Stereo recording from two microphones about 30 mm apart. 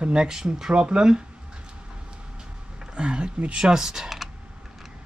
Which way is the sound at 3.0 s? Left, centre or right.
Right.